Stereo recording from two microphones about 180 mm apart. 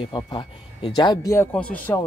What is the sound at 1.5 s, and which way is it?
Speech, 10° left (ahead or behind).